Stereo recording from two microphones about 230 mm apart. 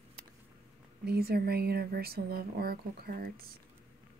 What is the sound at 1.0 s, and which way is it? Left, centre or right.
Speech, right.